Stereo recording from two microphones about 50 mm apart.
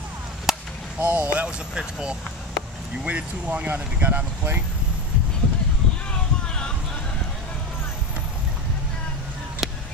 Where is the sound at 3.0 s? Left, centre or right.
Right.